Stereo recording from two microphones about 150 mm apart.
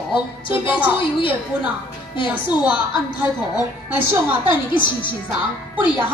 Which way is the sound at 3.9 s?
15° right (ahead or behind).